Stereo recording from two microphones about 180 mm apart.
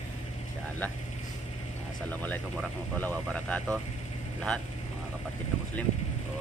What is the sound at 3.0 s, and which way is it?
Speech, 5° left (ahead or behind).